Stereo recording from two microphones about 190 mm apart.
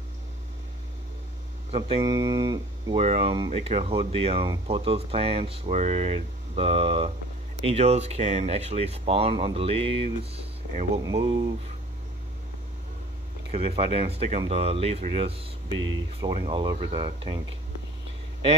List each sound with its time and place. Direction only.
1.7 s speech: 30° right (ahead or behind)
3.0 s speech: 30° right (ahead or behind)
13.5 s speech: 30° right (ahead or behind)